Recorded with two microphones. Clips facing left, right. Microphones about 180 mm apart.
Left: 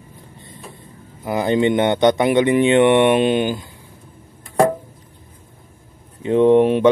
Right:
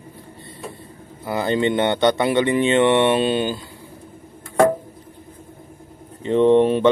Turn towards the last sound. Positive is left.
turn(degrees=10)  # may be behind; listen again after turning